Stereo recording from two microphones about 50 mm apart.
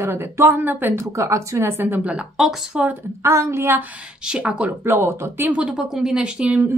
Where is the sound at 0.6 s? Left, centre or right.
Right.